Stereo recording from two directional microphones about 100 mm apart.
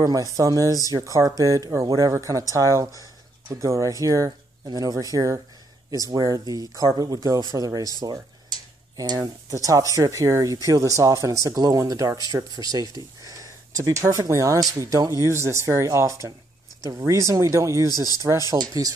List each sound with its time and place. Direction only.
0.0 s speech: 35° right (ahead or behind)
8.9 s speech: 40° right (ahead or behind)